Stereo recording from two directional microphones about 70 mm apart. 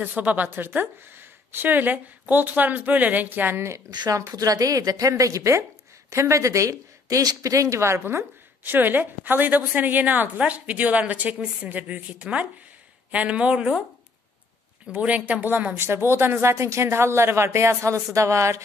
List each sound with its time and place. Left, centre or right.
0.0 s speech: right
3.9 s a woman's voice: right
4.2 s a woman's voice: right; by 13.8 s centre
14.9 s a woman's voice: right